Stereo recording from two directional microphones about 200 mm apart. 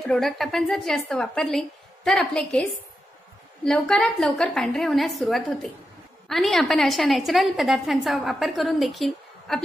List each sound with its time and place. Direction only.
0.0 s a woman's voice: centre (ahead or behind)
3.6 s a woman's voice: 5° left (ahead or behind)